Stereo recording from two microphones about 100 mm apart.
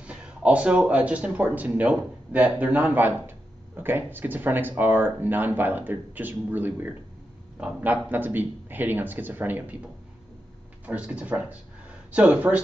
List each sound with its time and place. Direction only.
0.0 s speech: 10° right (ahead or behind)
10.9 s speech: 15° right (ahead or behind)